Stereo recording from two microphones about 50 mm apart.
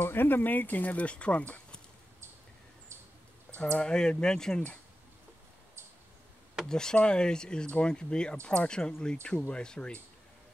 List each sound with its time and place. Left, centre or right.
0.0 s speech: left
3.5 s a sound: centre
3.8 s speech: centre
6.7 s speech: centre